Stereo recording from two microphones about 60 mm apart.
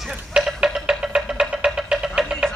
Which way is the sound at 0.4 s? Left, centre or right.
Centre.